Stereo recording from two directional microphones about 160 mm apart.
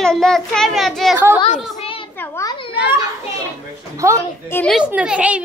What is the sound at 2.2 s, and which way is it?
Children playing, 20° left (ahead or behind).